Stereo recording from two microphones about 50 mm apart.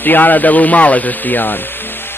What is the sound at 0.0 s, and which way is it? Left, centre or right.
Speech, left.